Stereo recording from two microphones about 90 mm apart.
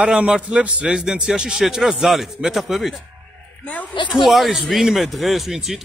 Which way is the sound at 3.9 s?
65° left (ahead or behind).